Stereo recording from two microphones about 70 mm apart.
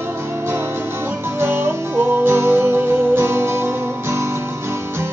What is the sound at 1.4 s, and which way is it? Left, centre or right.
Music, right.